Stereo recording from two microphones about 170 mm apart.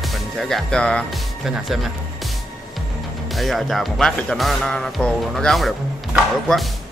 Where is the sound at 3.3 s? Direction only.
Centre (ahead or behind).